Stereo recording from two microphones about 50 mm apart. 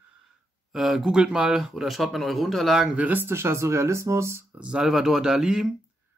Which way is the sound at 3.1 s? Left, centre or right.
Right.